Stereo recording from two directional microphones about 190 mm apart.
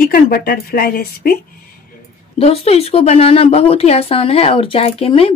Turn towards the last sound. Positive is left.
turn(degrees=30)  # may be behind; listen again after turning